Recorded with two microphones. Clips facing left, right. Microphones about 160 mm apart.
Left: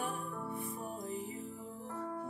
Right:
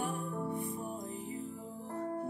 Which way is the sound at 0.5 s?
Centre (ahead or behind).